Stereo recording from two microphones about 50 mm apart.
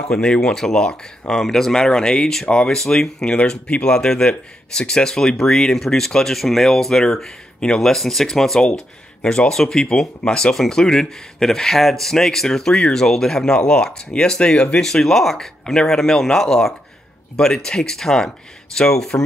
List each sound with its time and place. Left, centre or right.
0.0 s speech: centre